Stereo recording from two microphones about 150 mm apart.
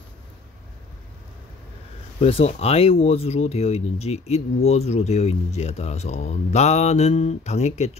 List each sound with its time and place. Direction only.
2.1 s speech: 45° left (ahead or behind)